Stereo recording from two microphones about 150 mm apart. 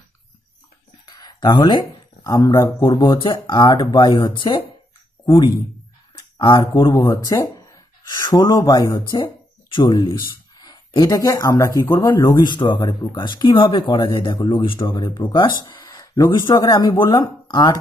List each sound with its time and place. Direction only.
1.0 s speech: 25° left (ahead or behind)